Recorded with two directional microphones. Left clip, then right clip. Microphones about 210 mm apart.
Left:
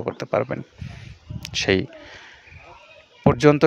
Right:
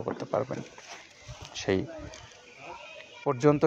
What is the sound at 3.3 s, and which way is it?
Speech, 50° left (ahead or behind).